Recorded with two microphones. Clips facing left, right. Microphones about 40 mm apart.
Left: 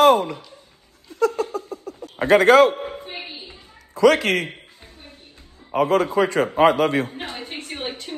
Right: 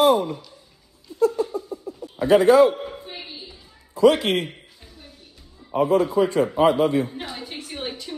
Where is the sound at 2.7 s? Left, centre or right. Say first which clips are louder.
Even; left.